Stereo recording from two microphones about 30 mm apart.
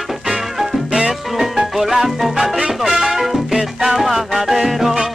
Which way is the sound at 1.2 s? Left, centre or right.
Centre.